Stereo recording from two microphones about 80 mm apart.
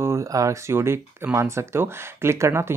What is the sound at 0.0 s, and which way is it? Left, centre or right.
Speech, right.